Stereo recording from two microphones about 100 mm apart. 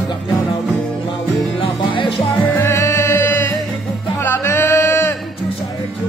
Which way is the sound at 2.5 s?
25° left (ahead or behind).